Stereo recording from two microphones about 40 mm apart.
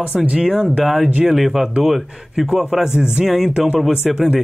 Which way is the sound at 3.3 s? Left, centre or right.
Centre.